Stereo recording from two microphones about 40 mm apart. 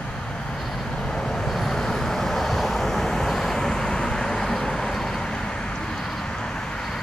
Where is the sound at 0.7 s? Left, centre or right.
Centre.